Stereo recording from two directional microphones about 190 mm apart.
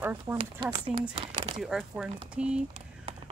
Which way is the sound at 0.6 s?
25° right (ahead or behind).